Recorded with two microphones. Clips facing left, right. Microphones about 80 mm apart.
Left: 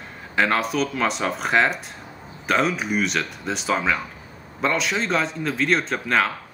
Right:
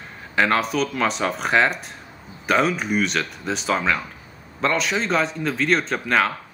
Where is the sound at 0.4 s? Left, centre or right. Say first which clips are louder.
Right 1 dB; centre.